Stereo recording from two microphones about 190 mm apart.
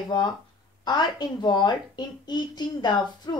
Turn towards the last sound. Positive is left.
turn(degrees=20)  # may be behind; listen again after turning